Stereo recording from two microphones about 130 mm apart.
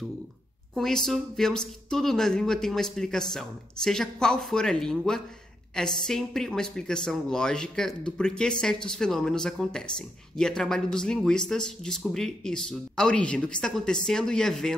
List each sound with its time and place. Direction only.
0.7 s speech: 5° left (ahead or behind)